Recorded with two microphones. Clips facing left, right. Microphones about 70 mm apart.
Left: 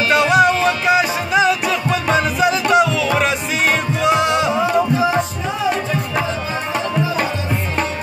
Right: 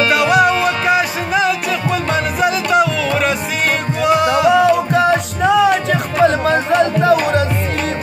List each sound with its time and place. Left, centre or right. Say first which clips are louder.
0.1 s music: left 3 dB; centre
4.5 s music: right 4 dB; right